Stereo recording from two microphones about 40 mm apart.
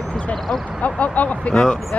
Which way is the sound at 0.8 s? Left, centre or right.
Left.